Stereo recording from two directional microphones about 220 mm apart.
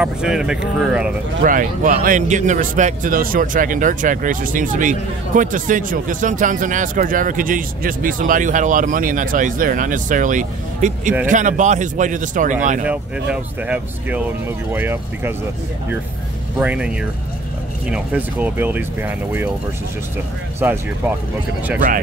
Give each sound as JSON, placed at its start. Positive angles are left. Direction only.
{"t": 0.0, "sound": "speech", "side_deg": -5}
{"t": 1.4, "sound": "a man's voice", "side_deg": -40}
{"t": 12.8, "sound": "speech", "side_deg": -5}
{"t": 16.5, "sound": "speech", "side_deg": -5}
{"t": 20.6, "sound": "speech", "side_deg": -10}